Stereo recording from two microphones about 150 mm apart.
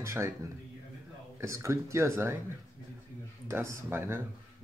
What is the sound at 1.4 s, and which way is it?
Speech, 20° right (ahead or behind).